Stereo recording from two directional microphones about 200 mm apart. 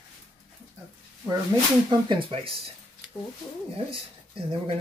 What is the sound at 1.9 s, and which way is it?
Speech, 25° right (ahead or behind).